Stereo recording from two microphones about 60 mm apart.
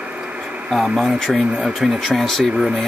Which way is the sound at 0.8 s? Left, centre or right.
Centre.